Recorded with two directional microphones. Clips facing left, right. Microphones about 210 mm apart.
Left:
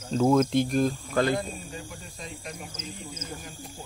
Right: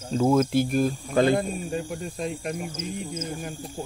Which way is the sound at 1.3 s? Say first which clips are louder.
Right 5 dB; 55° right (ahead or behind).